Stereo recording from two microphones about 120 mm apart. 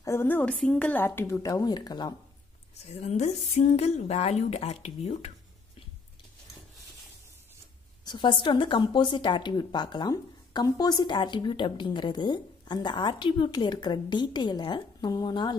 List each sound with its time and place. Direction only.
0.0 s a woman's voice: 20° left (ahead or behind)
2.8 s speech: 70° left (ahead or behind)
8.0 s speech: 40° left (ahead or behind)